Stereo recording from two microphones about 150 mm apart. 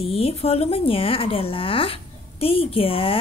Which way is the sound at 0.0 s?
40° left (ahead or behind).